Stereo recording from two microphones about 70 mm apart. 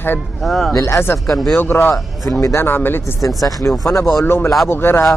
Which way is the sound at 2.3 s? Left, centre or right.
Left.